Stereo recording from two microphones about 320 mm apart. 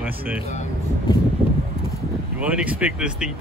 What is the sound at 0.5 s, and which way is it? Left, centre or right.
Speech, centre.